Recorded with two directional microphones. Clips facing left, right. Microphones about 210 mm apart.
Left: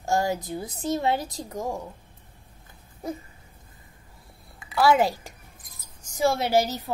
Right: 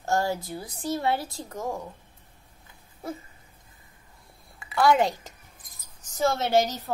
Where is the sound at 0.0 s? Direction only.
15° left (ahead or behind).